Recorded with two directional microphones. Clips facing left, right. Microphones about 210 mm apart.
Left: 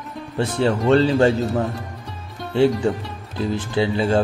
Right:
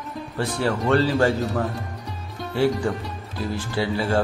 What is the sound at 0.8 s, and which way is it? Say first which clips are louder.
Speech: left 4 dB; 25° left (ahead or behind).